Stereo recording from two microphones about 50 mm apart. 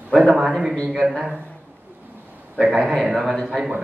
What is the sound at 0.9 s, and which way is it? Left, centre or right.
Speech, centre.